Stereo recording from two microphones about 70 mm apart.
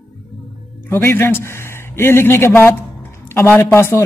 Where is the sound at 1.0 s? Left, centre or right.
Left.